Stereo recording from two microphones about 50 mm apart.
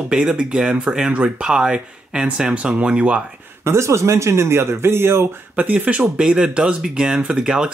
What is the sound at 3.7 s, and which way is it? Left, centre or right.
Speech, right.